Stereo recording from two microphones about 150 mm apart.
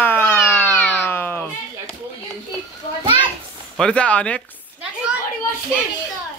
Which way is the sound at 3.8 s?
5° left (ahead or behind).